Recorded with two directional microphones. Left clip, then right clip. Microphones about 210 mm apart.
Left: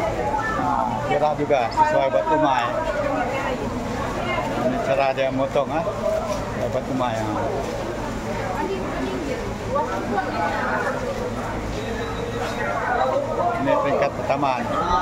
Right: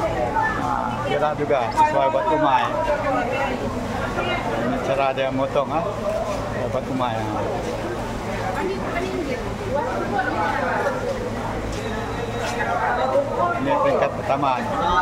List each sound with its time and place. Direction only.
1.2 s speech: centre (ahead or behind)
4.9 s speech: centre (ahead or behind)
14.0 s speech: centre (ahead or behind)